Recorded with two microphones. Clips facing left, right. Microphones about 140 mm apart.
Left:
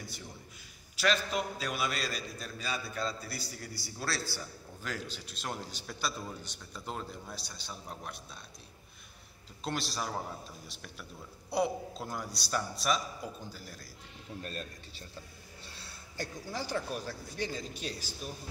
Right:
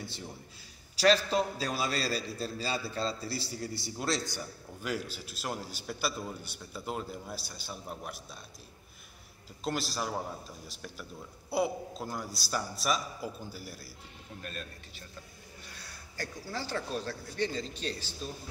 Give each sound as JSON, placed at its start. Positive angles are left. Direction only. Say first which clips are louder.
{"t": 0.9, "sound": "a man's voice", "louder": "right 5 dB", "side_deg": -35}
{"t": 9.7, "sound": "a man's voice", "louder": "right 2 dB", "side_deg": 0}
{"t": 14.4, "sound": "a man's voice", "louder": "even", "side_deg": 35}
{"t": 15.6, "sound": "a sound", "louder": "even", "side_deg": 30}
{"t": 16.5, "sound": "a man's voice", "louder": "even", "side_deg": 15}